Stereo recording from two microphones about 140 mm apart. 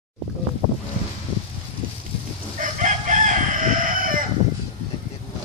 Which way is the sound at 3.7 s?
70° right (ahead or behind).